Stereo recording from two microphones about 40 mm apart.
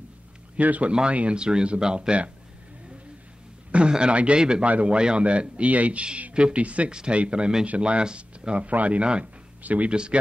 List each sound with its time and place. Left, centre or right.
0.6 s a man's voice: right
1.3 s speech: right
3.7 s speech: right
4.6 s a man's voice: right
4.9 s a man's voice: right
6.9 s speech: right
8.6 s a man's voice: right
9.6 s speech: right
9.8 s speech: right